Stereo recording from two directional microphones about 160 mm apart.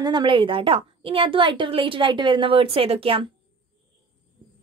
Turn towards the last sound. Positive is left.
turn(degrees=-35)  # may be behind; listen again after turning